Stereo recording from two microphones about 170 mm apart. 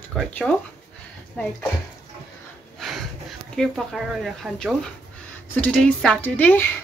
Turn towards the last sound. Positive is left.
turn(degrees=10)  # may be behind; listen again after turning